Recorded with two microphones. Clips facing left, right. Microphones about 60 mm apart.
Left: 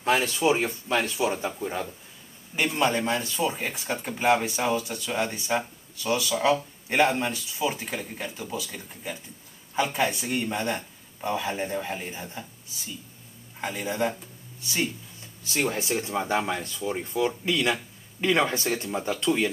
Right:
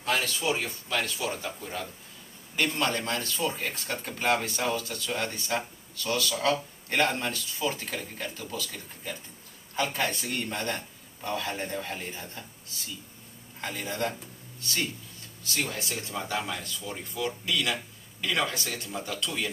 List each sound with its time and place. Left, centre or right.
0.0 s speech: left